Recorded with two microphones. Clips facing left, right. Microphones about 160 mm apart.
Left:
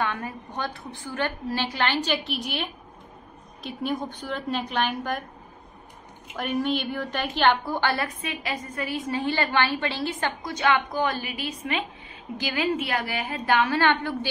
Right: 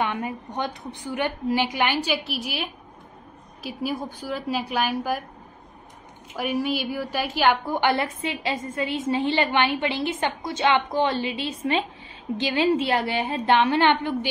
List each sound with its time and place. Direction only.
0.0 s a woman's voice: 20° right (ahead or behind)
6.3 s a woman's voice: 5° right (ahead or behind)